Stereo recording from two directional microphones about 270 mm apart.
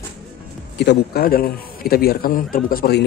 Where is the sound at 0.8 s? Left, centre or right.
Left.